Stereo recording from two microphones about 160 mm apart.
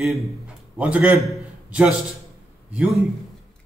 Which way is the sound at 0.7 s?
10° right (ahead or behind).